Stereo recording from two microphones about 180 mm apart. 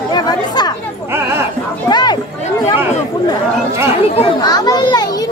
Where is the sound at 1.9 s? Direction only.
25° left (ahead or behind).